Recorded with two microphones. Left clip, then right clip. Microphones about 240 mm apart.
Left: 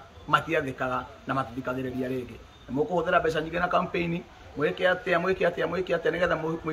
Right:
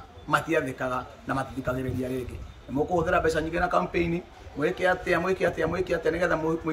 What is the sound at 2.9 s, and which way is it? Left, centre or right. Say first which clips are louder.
A man's voice: right 1 dB; centre.